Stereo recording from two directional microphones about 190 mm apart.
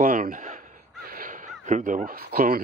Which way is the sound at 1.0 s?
45° right (ahead or behind).